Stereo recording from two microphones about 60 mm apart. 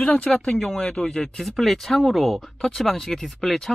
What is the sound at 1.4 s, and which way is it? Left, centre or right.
Speech, centre.